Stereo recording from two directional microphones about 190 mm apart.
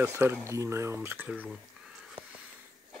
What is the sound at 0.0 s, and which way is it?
Speech, 15° right (ahead or behind).